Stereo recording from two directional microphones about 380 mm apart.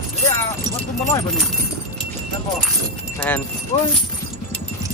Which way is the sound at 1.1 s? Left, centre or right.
Centre.